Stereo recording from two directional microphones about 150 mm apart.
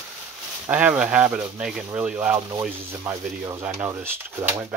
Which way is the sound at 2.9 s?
20° right (ahead or behind).